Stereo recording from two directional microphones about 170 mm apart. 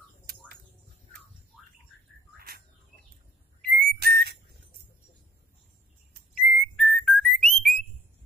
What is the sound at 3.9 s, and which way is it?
Whistle, 70° right (ahead or behind).